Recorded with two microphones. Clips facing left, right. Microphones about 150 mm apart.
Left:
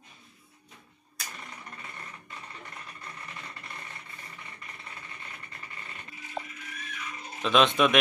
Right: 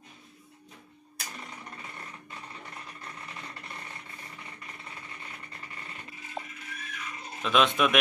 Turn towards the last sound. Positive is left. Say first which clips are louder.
# left 2 dB
turn(degrees=-5)  # may be behind; listen again after turning